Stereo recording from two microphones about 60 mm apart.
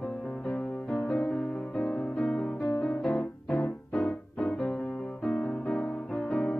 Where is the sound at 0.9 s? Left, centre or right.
Centre.